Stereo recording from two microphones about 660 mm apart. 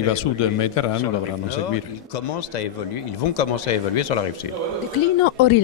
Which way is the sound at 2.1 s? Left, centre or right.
Left.